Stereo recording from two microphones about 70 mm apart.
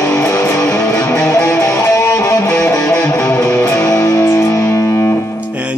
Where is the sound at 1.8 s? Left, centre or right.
Left.